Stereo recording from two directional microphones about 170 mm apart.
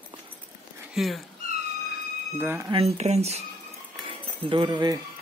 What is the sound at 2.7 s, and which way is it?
Speech, 35° right (ahead or behind).